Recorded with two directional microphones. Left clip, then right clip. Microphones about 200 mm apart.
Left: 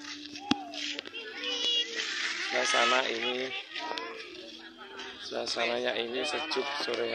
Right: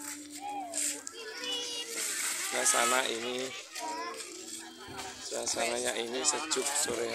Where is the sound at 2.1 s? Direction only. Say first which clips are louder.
Left 2 dB; 15° right (ahead or behind).